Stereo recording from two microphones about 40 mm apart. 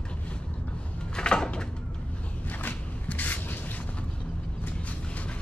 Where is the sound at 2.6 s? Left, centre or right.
Left.